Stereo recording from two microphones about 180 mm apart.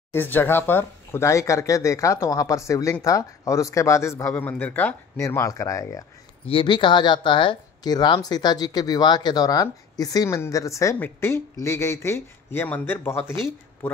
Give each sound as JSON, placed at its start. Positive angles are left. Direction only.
{"t": 0.1, "sound": "speech", "side_deg": 10}